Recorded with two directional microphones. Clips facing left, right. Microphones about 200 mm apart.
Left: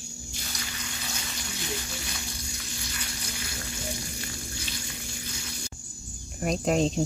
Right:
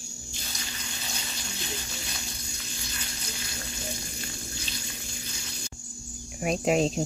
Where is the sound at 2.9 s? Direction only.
30° right (ahead or behind).